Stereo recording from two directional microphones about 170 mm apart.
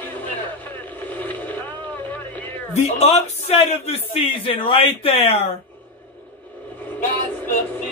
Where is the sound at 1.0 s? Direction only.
10° left (ahead or behind).